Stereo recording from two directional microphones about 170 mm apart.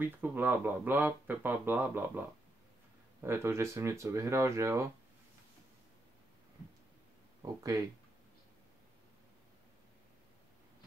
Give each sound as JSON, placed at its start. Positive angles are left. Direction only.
{"t": 0.0, "sound": "speech", "side_deg": -10}
{"t": 7.4, "sound": "speech", "side_deg": -20}